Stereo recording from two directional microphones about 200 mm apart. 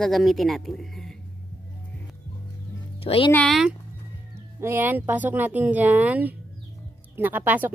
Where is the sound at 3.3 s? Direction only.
5° left (ahead or behind).